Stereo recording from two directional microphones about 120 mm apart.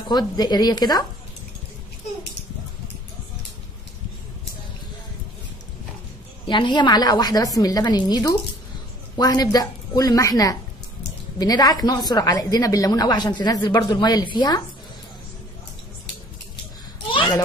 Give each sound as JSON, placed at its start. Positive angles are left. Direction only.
{"t": 0.1, "sound": "a woman's voice", "side_deg": 35}
{"t": 6.4, "sound": "a woman's voice", "side_deg": 40}
{"t": 17.1, "sound": "children playing", "side_deg": 45}